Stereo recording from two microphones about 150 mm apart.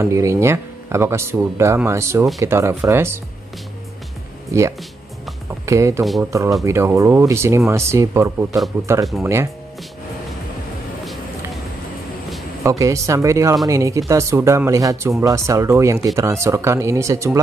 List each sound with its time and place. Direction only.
0.0 s speech: 20° right (ahead or behind)
4.5 s speech: 20° right (ahead or behind)
12.6 s speech: 20° right (ahead or behind)